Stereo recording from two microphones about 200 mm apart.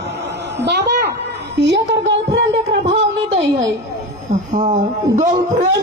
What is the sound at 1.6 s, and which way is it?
Speech, 60° right (ahead or behind).